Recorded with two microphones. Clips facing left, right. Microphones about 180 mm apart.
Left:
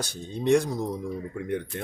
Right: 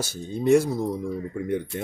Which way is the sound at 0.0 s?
5° right (ahead or behind).